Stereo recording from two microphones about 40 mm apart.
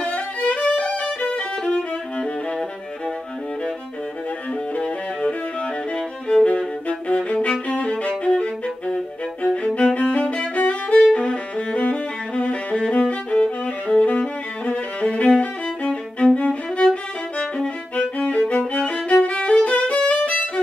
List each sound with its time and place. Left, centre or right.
0.4 s violin: left
4.7 s music: left
9.8 s violin: left
11.1 s music: left
12.8 s music: centre
13.1 s music: left
18.1 s music: left
19.0 s violin: left